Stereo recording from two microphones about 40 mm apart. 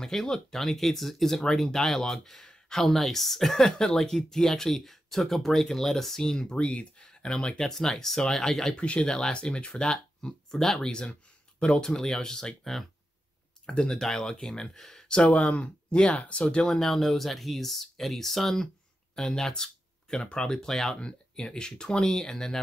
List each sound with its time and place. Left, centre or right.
0.0 s speech: centre
6.5 s speech: left; by 8.8 s centre
8.8 s speech: left
9.1 s speech: left
10.2 s speech: centre
10.8 s speech: centre
13.9 s speech: centre; by 16.4 s left
16.4 s speech: centre
16.8 s speech: centre
20.5 s speech: centre
21.0 s speech: left